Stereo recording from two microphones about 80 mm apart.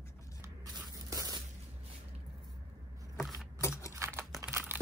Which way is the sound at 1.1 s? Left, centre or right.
Right.